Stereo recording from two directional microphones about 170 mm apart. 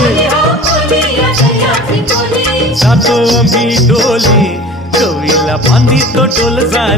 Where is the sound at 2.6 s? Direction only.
Centre (ahead or behind).